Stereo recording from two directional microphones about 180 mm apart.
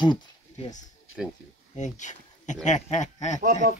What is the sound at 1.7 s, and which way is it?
Speech, 40° left (ahead or behind).